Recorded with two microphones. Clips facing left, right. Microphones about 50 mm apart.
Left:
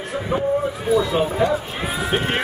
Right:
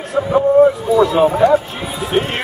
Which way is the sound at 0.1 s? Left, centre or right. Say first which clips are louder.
Right 10 dB; right.